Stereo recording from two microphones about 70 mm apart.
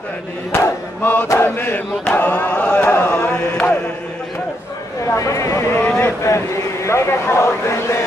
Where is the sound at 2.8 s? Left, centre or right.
Left.